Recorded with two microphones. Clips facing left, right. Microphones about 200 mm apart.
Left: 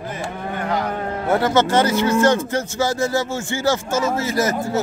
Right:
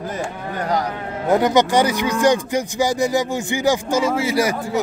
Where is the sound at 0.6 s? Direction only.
40° right (ahead or behind).